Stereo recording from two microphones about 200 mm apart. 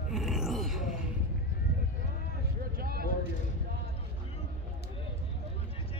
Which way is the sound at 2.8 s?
50° right (ahead or behind).